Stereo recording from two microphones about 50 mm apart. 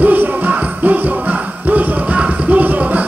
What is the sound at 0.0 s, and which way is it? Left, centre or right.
Music, right.